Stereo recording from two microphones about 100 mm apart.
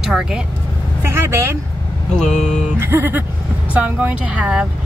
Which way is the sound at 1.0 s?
25° right (ahead or behind).